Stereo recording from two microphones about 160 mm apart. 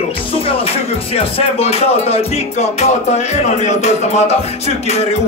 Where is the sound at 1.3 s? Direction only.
40° left (ahead or behind).